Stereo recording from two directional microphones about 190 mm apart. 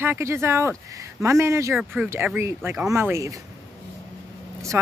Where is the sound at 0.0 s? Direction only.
15° right (ahead or behind).